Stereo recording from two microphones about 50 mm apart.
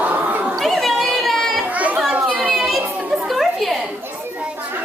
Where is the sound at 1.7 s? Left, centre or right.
Right.